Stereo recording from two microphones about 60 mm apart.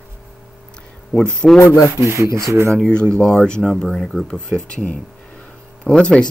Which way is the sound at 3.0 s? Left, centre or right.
Centre.